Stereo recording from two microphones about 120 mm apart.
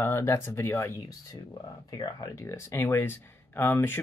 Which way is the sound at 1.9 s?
35° left (ahead or behind).